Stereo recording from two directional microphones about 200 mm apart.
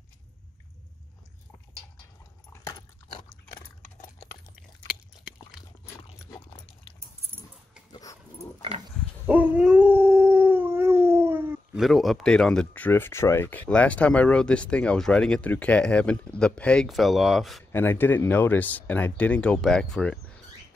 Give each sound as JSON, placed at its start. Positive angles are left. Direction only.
{"t": 2.5, "sound": "dog", "side_deg": 20}
{"t": 6.0, "sound": "dog", "side_deg": 25}
{"t": 7.9, "sound": "dog", "side_deg": 15}
{"t": 9.2, "sound": "howl", "side_deg": -10}
{"t": 17.6, "sound": "speech", "side_deg": 10}